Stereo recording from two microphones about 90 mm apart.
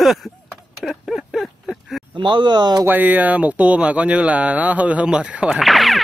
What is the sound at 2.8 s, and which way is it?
Speech, 20° right (ahead or behind).